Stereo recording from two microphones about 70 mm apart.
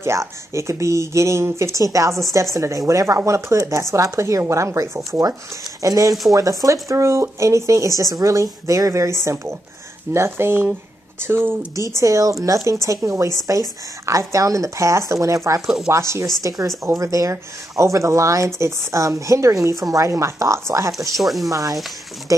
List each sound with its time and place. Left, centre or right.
0.0 s speech: right
5.8 s speech: right
12.0 s speech: right
21.2 s speech: centre
21.5 s speech: right